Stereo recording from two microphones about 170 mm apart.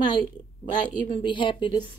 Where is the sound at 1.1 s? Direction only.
30° left (ahead or behind).